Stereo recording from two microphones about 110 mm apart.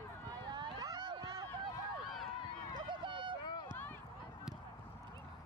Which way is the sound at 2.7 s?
45° right (ahead or behind).